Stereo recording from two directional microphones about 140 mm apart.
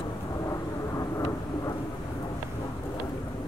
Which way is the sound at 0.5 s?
20° left (ahead or behind).